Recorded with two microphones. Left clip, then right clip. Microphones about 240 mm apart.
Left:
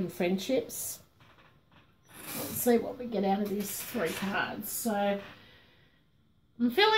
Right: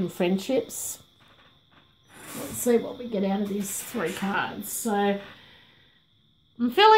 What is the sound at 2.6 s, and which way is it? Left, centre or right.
Speech, right.